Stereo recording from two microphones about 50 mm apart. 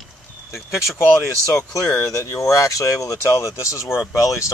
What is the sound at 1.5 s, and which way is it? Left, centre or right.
Speech, left.